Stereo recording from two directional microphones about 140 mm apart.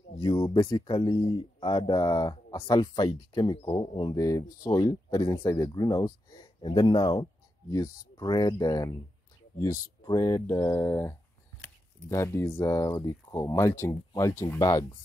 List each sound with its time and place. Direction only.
0.2 s speech: 30° left (ahead or behind)
0.9 s speech: 45° left (ahead or behind)
7.7 s speech: 25° left (ahead or behind)